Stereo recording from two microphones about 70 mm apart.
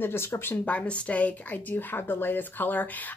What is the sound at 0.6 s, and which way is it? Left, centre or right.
Speech, centre.